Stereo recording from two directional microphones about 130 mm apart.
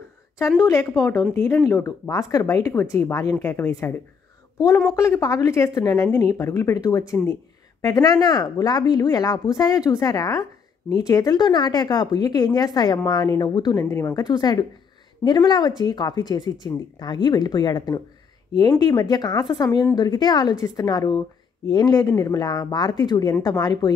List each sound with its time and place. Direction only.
0.7 s speech: 25° left (ahead or behind)
13.8 s speech: 20° left (ahead or behind)
14.2 s speech: 30° left (ahead or behind)